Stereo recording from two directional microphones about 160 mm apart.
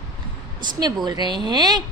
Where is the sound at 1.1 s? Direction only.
25° right (ahead or behind).